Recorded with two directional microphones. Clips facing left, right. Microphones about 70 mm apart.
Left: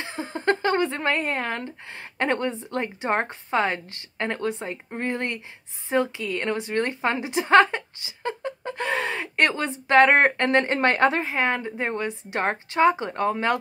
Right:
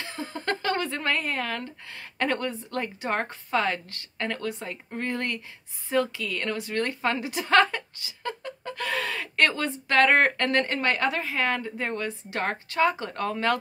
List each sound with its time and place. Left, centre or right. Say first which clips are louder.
0.0 s a woman's voice: left 6 dB; left